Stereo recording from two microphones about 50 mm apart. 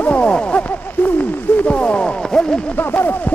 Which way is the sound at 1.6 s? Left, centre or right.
Left.